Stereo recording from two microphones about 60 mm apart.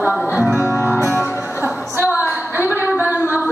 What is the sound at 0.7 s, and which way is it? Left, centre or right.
Music, left.